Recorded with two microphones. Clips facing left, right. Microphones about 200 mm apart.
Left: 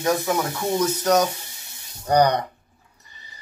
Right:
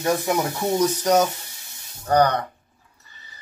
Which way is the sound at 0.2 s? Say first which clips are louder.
Right 1 dB; 15° right (ahead or behind).